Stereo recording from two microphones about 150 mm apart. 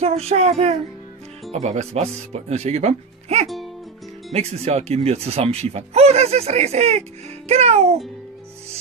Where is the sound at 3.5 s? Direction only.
Centre (ahead or behind).